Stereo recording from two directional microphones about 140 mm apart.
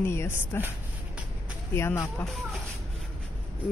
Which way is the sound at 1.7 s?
20° left (ahead or behind).